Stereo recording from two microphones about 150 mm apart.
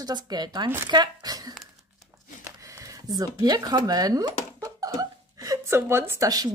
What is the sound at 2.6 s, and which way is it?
A woman's voice, 20° right (ahead or behind).